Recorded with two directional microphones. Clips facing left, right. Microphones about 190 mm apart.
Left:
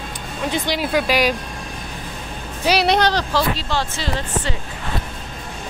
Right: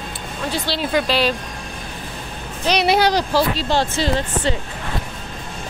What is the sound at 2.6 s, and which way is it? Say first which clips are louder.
Speech: left 1 dB; 5° left (ahead or behind).